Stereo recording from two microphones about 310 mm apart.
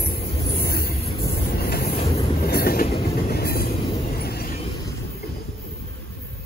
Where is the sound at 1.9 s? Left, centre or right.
Centre.